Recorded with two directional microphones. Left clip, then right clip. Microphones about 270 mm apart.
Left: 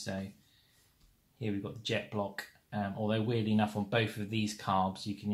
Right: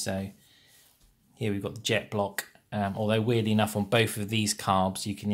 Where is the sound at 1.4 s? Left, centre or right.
Right.